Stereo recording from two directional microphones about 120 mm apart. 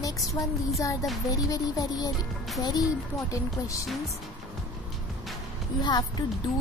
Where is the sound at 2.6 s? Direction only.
30° left (ahead or behind).